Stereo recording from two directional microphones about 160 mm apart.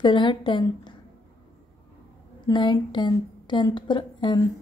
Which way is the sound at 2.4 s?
30° left (ahead or behind).